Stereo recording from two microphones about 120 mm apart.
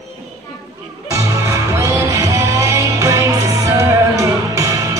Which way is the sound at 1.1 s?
25° right (ahead or behind).